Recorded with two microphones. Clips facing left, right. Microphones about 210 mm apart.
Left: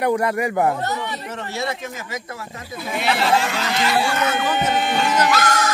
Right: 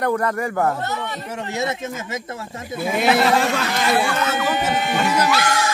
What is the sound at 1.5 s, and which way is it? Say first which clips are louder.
Speech: right 2 dB; 20° right (ahead or behind).